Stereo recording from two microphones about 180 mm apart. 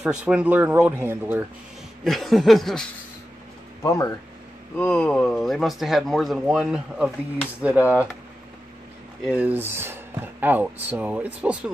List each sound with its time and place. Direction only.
0.0 s speech: 5° right (ahead or behind)
2.0 s speech: centre (ahead or behind)
3.8 s speech: 15° left (ahead or behind)
4.7 s speech: 5° left (ahead or behind); by 8.1 s 10° right (ahead or behind)
9.2 s speech: 5° right (ahead or behind)